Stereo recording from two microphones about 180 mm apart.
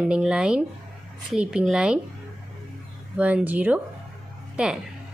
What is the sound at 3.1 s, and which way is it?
A woman's voice, 10° right (ahead or behind).